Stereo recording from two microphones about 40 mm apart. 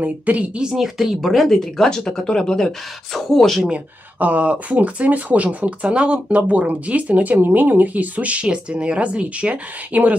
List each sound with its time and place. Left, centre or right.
0.0 s speech: right
0.7 s speech: centre
3.7 s speech: right
7.3 s speech: right